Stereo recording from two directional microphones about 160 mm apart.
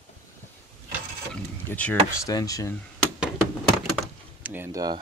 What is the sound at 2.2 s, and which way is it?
Speech, 20° left (ahead or behind).